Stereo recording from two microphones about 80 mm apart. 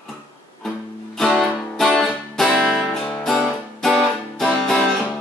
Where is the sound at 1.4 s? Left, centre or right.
Centre.